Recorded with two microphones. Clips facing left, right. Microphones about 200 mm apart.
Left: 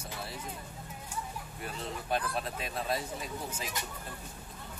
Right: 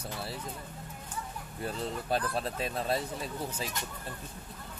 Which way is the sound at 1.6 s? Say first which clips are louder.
Right 5 dB; 35° right (ahead or behind).